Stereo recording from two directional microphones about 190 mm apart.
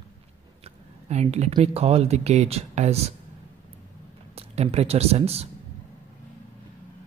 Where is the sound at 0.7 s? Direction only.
35° right (ahead or behind).